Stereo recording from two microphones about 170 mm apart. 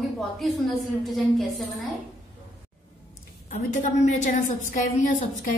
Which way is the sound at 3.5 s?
45° left (ahead or behind).